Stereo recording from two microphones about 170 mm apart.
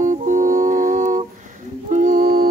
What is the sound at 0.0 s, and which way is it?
Music, 50° right (ahead or behind).